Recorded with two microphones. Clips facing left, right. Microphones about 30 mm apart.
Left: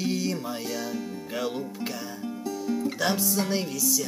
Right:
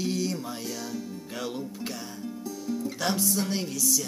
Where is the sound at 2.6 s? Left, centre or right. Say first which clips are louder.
Left 3 dB; centre.